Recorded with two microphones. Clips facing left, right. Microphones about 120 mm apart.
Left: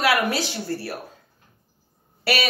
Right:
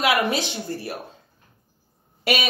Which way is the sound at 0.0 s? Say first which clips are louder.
Even; 20° right (ahead or behind).